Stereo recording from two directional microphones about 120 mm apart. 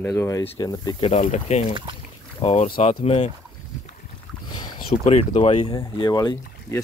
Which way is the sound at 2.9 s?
55° left (ahead or behind).